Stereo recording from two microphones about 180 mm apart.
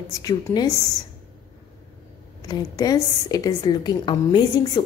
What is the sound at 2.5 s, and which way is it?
A woman's voice, 20° left (ahead or behind).